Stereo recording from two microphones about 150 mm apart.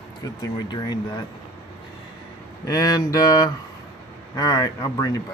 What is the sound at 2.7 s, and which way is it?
Speech, 25° left (ahead or behind).